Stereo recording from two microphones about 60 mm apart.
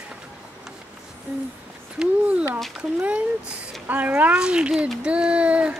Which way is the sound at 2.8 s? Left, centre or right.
Right.